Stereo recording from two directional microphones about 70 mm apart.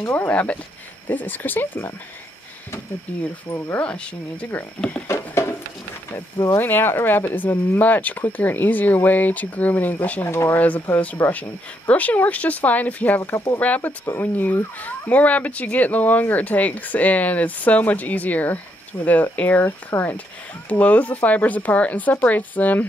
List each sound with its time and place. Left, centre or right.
0.1 s speech: centre
3.1 s speech: centre
5.0 s a sound: left
6.6 s speech: left
10.2 s speech: left
10.6 s speech: left